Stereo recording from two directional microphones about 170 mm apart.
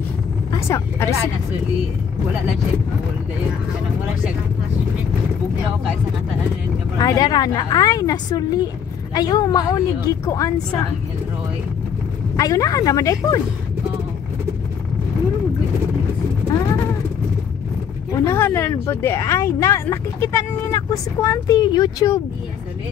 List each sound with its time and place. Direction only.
0.5 s speech: 15° left (ahead or behind)
7.0 s a woman's voice: 25° left (ahead or behind)
12.4 s a woman's voice: 20° left (ahead or behind)
18.2 s speech: 15° left (ahead or behind)